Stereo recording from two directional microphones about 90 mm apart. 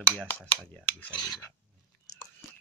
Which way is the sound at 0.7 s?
15° left (ahead or behind).